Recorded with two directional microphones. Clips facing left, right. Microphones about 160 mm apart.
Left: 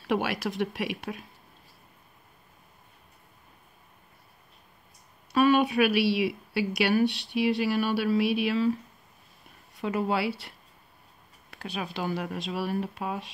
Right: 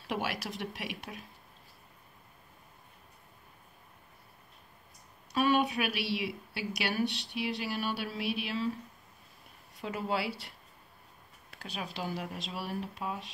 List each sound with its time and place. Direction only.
0.0 s speech: 65° left (ahead or behind)
5.3 s speech: 60° left (ahead or behind)
9.8 s speech: 65° left (ahead or behind)
11.5 s speech: 65° left (ahead or behind)